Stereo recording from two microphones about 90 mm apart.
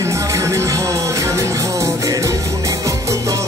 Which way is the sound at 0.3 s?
35° right (ahead or behind).